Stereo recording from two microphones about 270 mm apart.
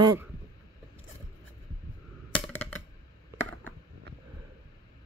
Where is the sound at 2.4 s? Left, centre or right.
Centre.